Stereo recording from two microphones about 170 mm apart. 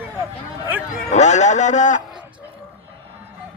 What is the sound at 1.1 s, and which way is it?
Speech, 45° left (ahead or behind).